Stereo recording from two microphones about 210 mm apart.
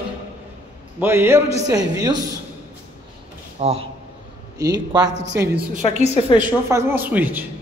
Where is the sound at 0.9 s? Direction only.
10° right (ahead or behind).